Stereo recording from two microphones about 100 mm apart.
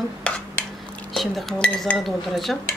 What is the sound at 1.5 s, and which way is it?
Speech, 10° left (ahead or behind).